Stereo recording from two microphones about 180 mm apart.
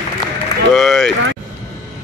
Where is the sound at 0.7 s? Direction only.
Centre (ahead or behind).